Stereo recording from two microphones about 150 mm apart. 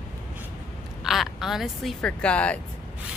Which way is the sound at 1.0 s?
Centre (ahead or behind).